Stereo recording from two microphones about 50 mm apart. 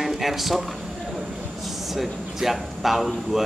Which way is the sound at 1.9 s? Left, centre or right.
Centre.